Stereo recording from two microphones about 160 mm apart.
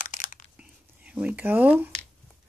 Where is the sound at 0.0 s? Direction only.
55° left (ahead or behind).